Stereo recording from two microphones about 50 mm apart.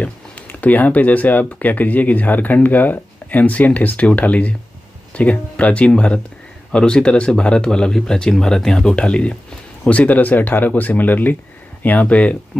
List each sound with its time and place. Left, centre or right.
0.0 s speech: left